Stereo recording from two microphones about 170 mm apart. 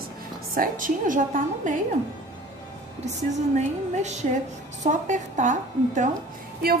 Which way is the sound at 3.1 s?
45° right (ahead or behind).